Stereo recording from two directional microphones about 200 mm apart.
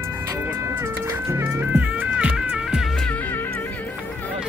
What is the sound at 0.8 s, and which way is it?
Music, 10° right (ahead or behind).